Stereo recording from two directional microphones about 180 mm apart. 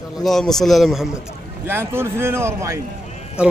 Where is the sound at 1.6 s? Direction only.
10° right (ahead or behind).